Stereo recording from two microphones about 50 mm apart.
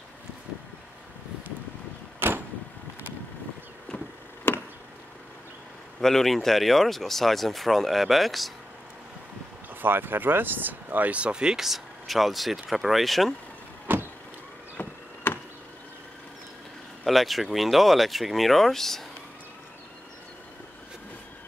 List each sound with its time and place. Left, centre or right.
2.1 s vehicle: right
4.5 s chop: left
5.9 s speech: centre
9.8 s speech: right; by 13.3 s centre
13.9 s vehicle: right
14.8 s power windows: left
15.3 s a sound: left
17.0 s speech: centre